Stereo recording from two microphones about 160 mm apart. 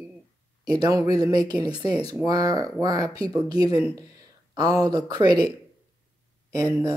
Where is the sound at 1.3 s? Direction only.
25° right (ahead or behind).